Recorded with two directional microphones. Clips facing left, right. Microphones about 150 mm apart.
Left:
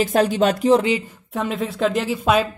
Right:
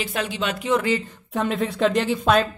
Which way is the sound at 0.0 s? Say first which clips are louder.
Left 9 dB; 45° left (ahead or behind).